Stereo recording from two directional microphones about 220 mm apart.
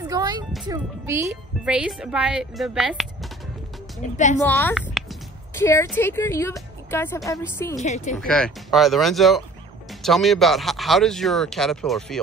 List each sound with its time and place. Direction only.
0.0 s music: 20° right (ahead or behind)
0.7 s speech: 10° right (ahead or behind)
4.0 s a woman's voice: 35° left (ahead or behind)
4.4 s a woman's voice: 10° left (ahead or behind)
4.7 s a sound: 5° right (ahead or behind)
5.5 s a woman's voice: 10° left (ahead or behind)
7.7 s a woman's voice: 30° left (ahead or behind)
8.2 s speech: 5° left (ahead or behind)